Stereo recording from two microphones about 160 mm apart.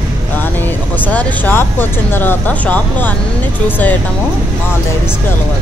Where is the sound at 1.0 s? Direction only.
10° left (ahead or behind).